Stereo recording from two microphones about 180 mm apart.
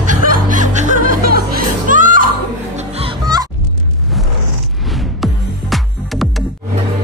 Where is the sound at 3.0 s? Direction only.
20° right (ahead or behind).